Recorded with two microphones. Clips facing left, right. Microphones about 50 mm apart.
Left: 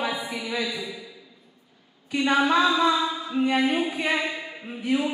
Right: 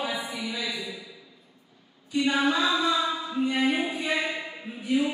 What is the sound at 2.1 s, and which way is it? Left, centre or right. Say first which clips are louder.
Speech: left 2 dB; left.